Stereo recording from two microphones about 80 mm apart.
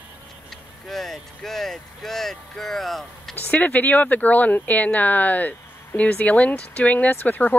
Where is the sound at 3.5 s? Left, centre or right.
Centre.